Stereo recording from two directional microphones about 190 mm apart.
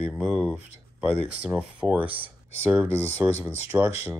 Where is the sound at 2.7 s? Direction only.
10° right (ahead or behind).